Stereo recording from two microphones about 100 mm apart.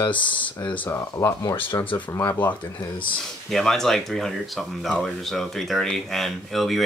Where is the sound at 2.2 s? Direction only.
15° left (ahead or behind).